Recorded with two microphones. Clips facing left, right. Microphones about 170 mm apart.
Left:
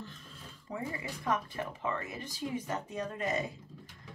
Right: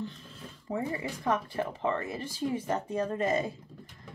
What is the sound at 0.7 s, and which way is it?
Speech, 30° right (ahead or behind).